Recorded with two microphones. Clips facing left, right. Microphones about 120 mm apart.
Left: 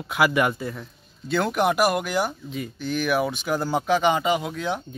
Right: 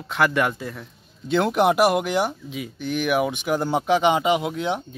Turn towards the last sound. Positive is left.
turn(degrees=-20)  # may be behind; listen again after turning